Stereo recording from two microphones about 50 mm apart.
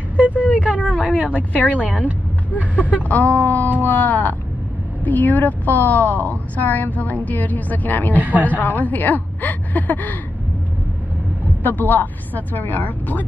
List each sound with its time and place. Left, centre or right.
0.2 s vehicle: right
0.7 s a sound: right
1.3 s a woman's voice: left
1.8 s speech: right
2.7 s a woman's voice: left
8.2 s a woman's voice: right
8.5 s a woman's voice: left
11.6 s a woman's voice: left